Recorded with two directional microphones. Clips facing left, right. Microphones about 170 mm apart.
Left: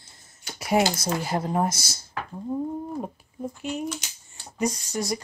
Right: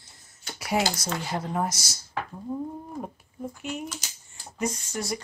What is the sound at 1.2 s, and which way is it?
Speech, 35° left (ahead or behind).